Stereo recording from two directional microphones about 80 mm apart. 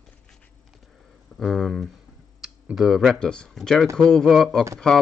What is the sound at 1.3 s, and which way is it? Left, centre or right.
A man's voice, centre.